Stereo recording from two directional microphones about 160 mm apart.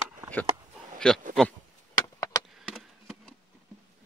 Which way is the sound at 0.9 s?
5° left (ahead or behind).